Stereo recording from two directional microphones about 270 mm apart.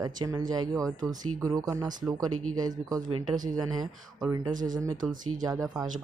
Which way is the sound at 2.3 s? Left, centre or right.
Right.